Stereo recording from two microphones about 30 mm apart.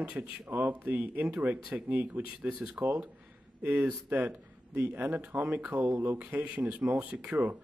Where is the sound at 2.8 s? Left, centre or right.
Right.